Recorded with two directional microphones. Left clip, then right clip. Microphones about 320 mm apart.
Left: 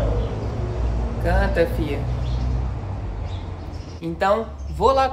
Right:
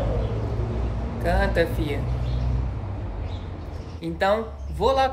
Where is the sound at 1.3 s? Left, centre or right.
Centre.